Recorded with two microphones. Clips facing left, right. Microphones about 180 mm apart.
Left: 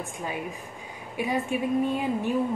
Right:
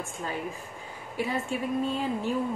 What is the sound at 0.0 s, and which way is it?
A woman's voice, 15° left (ahead or behind).